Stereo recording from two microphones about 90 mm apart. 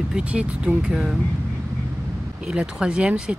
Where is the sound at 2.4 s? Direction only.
10° right (ahead or behind).